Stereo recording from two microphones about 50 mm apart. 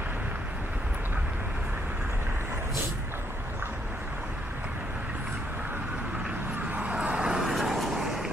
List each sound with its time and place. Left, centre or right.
6.9 s vehicle: right
7.4 s vehicle: centre